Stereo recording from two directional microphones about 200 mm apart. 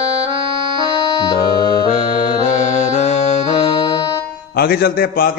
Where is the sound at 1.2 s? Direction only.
20° left (ahead or behind).